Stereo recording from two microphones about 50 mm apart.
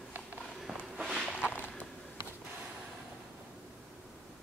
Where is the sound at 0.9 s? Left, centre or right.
Centre.